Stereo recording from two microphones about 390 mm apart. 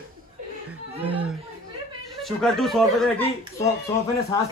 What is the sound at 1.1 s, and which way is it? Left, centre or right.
Chatter, centre.